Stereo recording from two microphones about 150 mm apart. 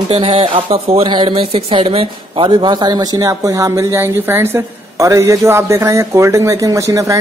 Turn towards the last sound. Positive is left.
turn(degrees=-20)  # may be behind; listen again after turning